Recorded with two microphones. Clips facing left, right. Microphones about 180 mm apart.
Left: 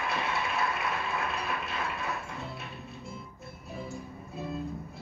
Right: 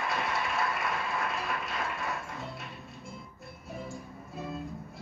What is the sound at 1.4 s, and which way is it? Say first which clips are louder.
Ratchet: even; centre (ahead or behind).